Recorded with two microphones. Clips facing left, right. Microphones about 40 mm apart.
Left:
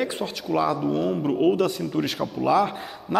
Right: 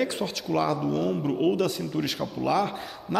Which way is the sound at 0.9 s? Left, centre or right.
Left.